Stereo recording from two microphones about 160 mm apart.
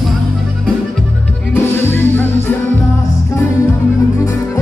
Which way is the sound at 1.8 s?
15° left (ahead or behind).